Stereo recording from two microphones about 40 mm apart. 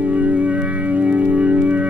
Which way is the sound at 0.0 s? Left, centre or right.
Right.